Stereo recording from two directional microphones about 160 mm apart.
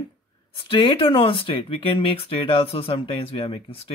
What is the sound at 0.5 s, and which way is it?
Speech, 30° left (ahead or behind).